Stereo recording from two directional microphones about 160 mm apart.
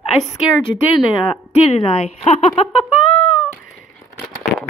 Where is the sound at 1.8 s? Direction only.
40° left (ahead or behind).